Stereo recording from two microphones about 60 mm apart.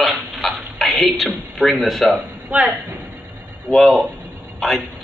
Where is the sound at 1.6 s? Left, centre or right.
Centre.